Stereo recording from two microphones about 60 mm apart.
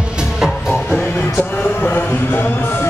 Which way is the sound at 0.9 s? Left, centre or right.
Left.